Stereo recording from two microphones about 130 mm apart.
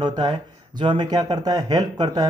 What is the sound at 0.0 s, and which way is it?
Speech, 35° right (ahead or behind).